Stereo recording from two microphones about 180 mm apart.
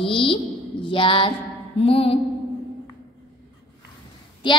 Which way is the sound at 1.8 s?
30° left (ahead or behind).